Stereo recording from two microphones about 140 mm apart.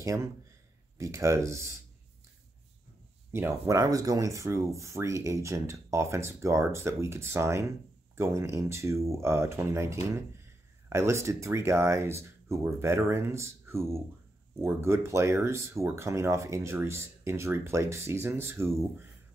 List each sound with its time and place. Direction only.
0.0 s speech: 20° right (ahead or behind)
3.3 s speech: 15° right (ahead or behind)